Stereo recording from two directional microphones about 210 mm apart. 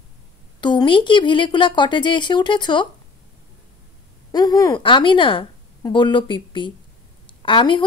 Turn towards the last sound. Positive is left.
turn(degrees=25)  # may be behind; listen again after turning